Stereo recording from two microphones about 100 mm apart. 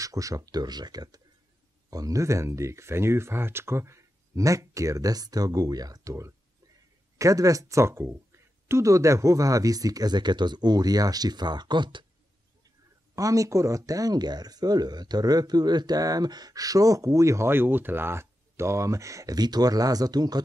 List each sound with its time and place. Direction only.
0.0 s speech: 35° right (ahead or behind); by 12.1 s 50° right (ahead or behind)
13.1 s speech: 35° right (ahead or behind)